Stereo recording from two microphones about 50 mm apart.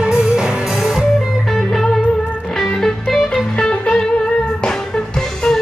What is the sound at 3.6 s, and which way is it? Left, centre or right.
Music, centre.